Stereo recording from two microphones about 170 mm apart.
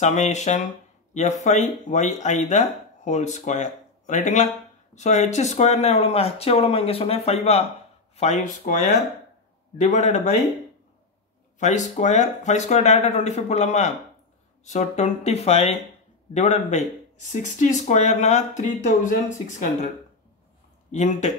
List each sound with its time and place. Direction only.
0.0 s speech: 45° left (ahead or behind)
11.6 s speech: 45° left (ahead or behind)
20.9 s speech: 40° left (ahead or behind)